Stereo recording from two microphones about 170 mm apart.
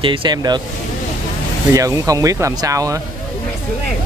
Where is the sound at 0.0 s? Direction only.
30° right (ahead or behind).